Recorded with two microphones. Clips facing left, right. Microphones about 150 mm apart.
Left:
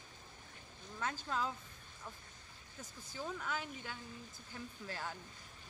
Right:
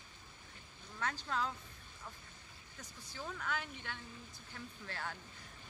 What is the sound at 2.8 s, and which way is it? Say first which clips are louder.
Speech: left 2 dB; 15° left (ahead or behind).